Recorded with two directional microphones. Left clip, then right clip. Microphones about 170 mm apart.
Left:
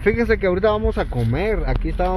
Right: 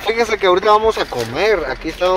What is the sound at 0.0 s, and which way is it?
Speech, 5° right (ahead or behind).